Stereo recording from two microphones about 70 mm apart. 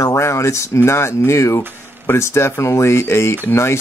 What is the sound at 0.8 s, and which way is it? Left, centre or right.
Speech, left.